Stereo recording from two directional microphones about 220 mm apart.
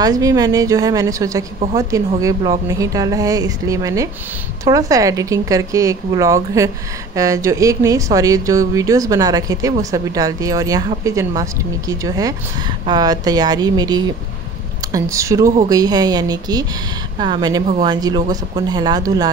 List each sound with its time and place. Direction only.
0.0 s speech: 15° right (ahead or behind)